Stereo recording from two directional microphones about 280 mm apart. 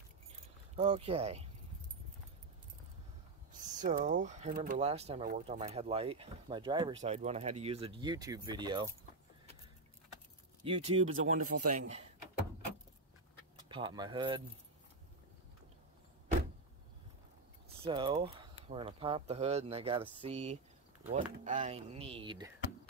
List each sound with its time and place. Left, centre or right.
0.7 s speech: centre
3.6 s speech: right
10.7 s speech: right
13.7 s speech: centre
17.8 s speech: centre